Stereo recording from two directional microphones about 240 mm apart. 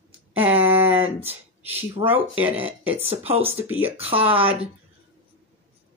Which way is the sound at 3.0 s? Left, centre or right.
Right.